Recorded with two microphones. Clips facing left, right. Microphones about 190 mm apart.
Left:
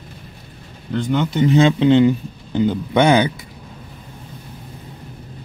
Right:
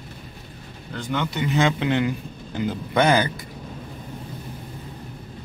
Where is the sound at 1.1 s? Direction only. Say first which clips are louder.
Left 8 dB; 40° left (ahead or behind).